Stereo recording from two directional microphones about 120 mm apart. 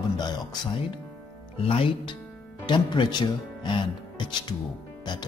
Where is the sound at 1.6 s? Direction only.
50° left (ahead or behind).